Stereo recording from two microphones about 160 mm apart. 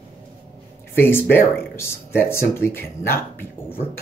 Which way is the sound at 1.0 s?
15° left (ahead or behind).